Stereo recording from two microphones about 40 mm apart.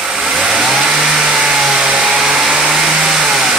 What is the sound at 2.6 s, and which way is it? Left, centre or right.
Vehicle, centre.